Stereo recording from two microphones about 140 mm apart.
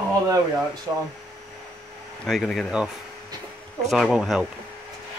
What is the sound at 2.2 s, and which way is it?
Speech, centre (ahead or behind).